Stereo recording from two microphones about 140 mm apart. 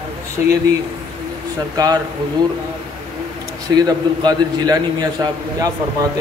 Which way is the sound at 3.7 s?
30° right (ahead or behind).